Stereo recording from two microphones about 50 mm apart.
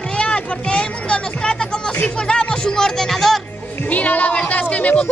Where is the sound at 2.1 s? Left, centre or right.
Centre.